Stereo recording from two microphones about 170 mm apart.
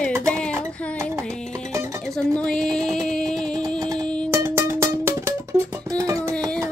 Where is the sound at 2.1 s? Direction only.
5° left (ahead or behind).